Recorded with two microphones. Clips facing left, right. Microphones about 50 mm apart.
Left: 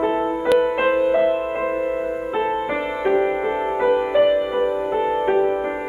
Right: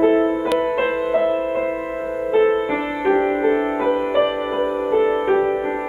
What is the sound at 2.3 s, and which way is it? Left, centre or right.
Music, centre.